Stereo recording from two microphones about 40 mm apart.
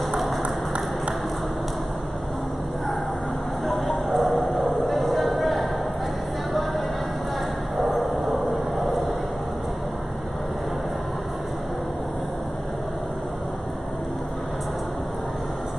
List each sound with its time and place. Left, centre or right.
0.4 s a sound: right
3.6 s vehicle: centre
7.9 s vehicle: centre